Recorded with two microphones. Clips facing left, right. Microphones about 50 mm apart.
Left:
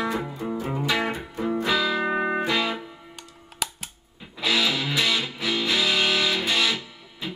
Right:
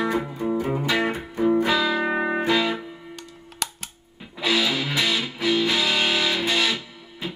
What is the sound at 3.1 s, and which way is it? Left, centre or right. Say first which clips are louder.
Music: right 4 dB; centre.